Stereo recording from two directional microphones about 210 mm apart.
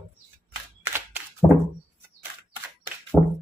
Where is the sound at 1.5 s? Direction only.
10° left (ahead or behind).